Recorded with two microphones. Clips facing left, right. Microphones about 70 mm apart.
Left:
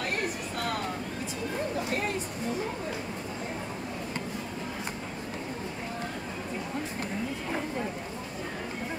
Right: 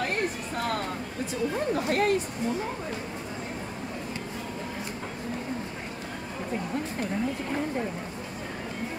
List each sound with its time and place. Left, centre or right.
1.9 s speech: right